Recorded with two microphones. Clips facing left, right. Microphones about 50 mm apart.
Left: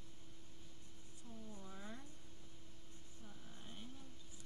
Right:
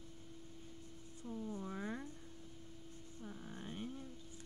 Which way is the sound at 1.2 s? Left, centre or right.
Right.